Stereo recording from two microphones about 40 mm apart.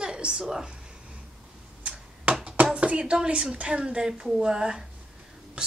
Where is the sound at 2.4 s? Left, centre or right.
Right.